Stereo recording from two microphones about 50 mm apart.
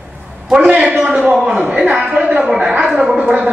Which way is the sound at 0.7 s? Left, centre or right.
Centre.